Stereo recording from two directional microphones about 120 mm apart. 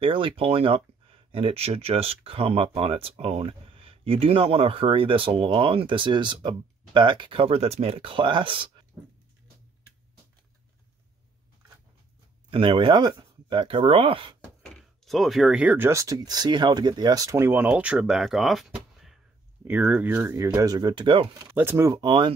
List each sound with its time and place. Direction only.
0.0 s speech: 50° right (ahead or behind)
12.4 s speech: 45° right (ahead or behind)
14.4 s speech: 5° left (ahead or behind)
19.7 s speech: 15° right (ahead or behind)
20.3 s speech: 30° right (ahead or behind)
21.4 s speech: 20° right (ahead or behind)
22.0 s speech: 40° right (ahead or behind)